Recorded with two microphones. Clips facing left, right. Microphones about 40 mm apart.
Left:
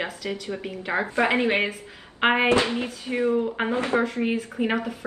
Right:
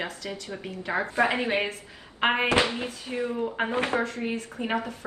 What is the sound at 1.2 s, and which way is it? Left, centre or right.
Speech, left.